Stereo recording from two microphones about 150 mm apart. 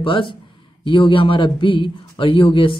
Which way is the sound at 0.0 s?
35° left (ahead or behind).